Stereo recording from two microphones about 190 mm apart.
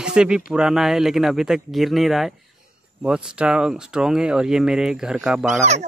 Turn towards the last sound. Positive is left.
turn(degrees=-5)  # may be behind; listen again after turning